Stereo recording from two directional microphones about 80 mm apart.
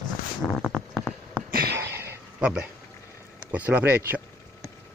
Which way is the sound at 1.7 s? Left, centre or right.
Right.